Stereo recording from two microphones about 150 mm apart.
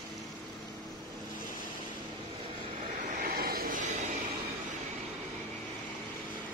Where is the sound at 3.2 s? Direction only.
80° right.